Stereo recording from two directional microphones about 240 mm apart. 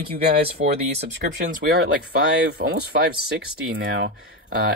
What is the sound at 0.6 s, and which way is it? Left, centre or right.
Speech, right.